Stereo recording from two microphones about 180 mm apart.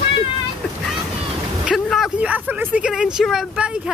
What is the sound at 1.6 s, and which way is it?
Speech, centre (ahead or behind).